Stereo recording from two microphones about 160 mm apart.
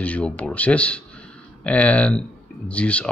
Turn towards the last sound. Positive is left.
turn(degrees=5)  # may be behind; listen again after turning